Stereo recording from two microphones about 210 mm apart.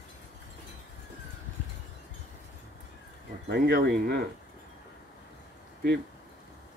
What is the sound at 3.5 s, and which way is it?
Speech, 50° right (ahead or behind).